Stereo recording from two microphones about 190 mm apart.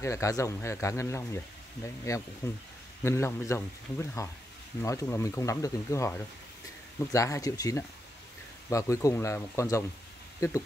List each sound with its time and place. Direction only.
0.0 s speech: 15° left (ahead or behind)